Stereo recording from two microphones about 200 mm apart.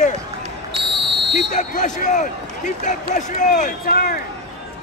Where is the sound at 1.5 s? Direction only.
40° left (ahead or behind).